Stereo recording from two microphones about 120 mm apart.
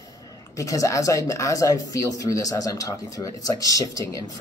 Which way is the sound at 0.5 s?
25° left (ahead or behind).